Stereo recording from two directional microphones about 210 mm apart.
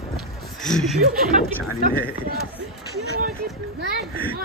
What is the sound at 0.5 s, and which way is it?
Speech, centre (ahead or behind).